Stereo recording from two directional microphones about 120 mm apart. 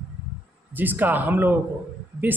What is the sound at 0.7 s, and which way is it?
Speech, 15° right (ahead or behind).